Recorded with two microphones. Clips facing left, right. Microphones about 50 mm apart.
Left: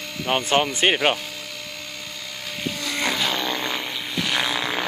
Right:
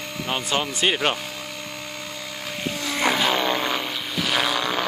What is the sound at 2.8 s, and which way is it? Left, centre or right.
Vehicle, centre.